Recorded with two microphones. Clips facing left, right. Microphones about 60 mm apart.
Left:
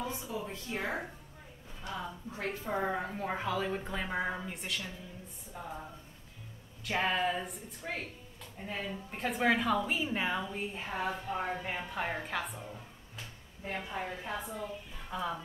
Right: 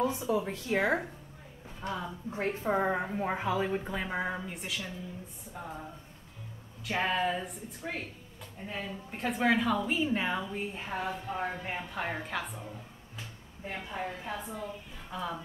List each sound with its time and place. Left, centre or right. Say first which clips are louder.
0.3 s speech: right 8 dB; right
1.8 s a woman's voice: right 5 dB; right
2.3 s a woman's voice: right 6 dB; right; by 5.8 s centre
6.8 s a woman's voice: right 1 dB; centre
13.7 s a woman's voice: right 1 dB; centre